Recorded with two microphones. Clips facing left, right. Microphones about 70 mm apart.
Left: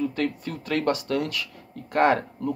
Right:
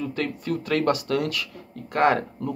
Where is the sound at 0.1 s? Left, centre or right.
Left.